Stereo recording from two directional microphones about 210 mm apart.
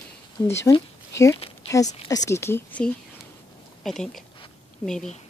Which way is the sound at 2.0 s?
15° left (ahead or behind).